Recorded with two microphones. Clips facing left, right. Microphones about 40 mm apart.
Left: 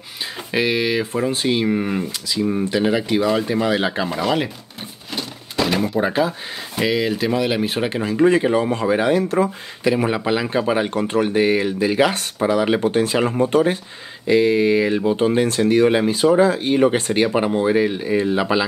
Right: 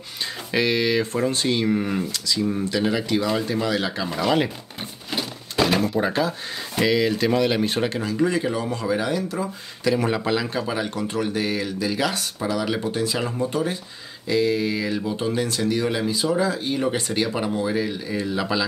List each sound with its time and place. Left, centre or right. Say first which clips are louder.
0.5 s speech: left 2 dB; centre
4.1 s speech: left 1 dB; centre
5.1 s a sound: left 1 dB; centre
5.8 s speech: left 3 dB; centre
7.9 s speech: left 6 dB; left
9.8 s speech: left 3 dB; centre